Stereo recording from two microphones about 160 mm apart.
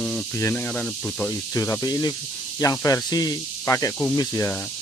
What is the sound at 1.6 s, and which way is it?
Speech, 20° left (ahead or behind).